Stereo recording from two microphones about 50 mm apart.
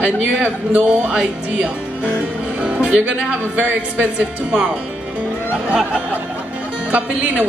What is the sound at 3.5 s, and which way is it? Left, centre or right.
Speech, right.